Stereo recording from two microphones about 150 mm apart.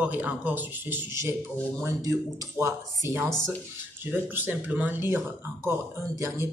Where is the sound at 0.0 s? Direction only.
10° right (ahead or behind).